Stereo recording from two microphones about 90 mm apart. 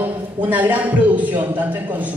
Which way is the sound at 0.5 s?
20° right (ahead or behind).